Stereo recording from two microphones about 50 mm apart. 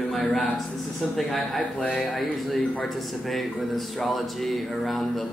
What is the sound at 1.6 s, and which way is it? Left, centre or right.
Speech, left.